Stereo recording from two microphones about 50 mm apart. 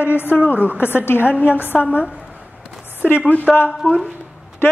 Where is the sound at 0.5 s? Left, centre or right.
Right.